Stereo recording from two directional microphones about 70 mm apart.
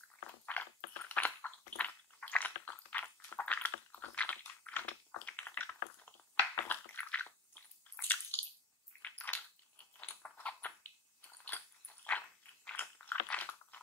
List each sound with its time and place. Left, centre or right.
0.5 s a sound: left
7.2 s squish: left
9.0 s a sound: left
11.4 s biting: left
12.6 s chewing: left
13.3 s biting: left